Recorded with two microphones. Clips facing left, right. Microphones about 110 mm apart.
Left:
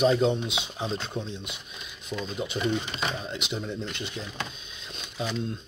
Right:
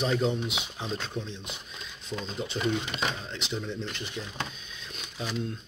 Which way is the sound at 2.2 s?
10° left (ahead or behind).